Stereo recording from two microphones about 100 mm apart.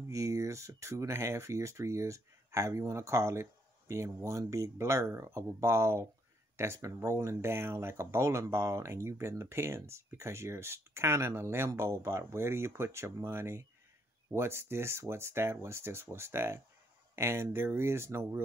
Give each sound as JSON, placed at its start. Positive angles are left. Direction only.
{"t": 0.1, "sound": "speech", "side_deg": -30}